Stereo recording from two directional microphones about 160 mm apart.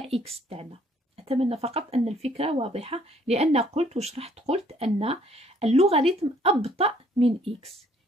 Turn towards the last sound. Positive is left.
turn(degrees=-40)  # may be behind; listen again after turning